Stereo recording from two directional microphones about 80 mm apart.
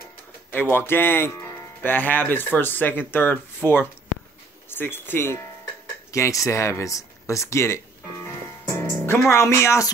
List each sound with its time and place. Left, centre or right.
0.5 s speech: left
8.6 s music: left
9.3 s speech: left